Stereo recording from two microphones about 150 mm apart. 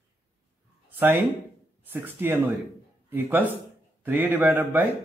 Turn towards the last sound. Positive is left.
turn(degrees=-10)  # may be behind; listen again after turning